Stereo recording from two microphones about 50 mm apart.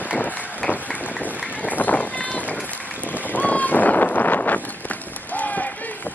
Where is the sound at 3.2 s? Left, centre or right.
Left.